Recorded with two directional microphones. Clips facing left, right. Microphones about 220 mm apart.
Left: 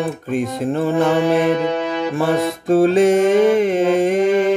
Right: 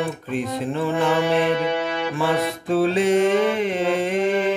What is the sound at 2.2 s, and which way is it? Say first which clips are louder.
Music: left 4 dB; 45° left (ahead or behind).